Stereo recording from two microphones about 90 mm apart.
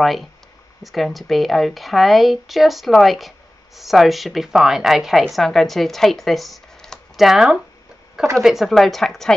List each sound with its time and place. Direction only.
0.0 s speech: centre (ahead or behind)